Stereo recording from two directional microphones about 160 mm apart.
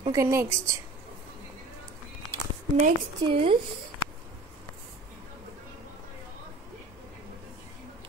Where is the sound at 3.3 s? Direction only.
35° right (ahead or behind).